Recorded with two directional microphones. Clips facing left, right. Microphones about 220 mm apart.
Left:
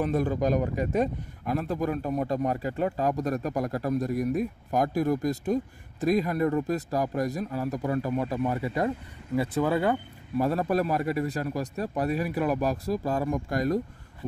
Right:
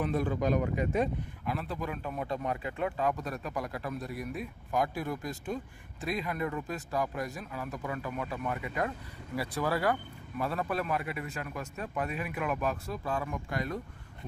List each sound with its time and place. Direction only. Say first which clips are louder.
0.0 s speech: left 4 dB; 40° left (ahead or behind)
9.4 s speech: left 6 dB; 25° left (ahead or behind)
10.3 s speech: left 8 dB; 40° left (ahead or behind)